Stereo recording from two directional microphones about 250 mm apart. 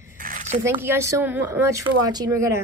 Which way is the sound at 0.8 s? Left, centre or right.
Centre.